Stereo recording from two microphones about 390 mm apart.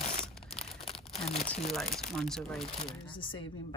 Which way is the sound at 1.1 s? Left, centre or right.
Centre.